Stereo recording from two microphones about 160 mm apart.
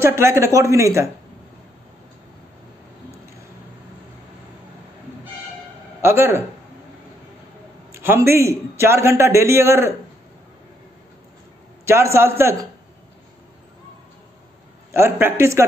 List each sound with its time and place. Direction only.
0.0 s speech: 15° right (ahead or behind)
5.9 s speech: 15° right (ahead or behind)
7.9 s a man's voice: 15° right (ahead or behind)
11.8 s a man's voice: 15° right (ahead or behind)
14.9 s a man's voice: 15° right (ahead or behind)